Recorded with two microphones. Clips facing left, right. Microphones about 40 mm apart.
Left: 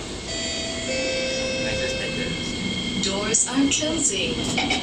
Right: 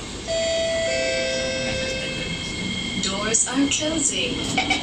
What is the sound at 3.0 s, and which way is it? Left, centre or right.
Train, centre.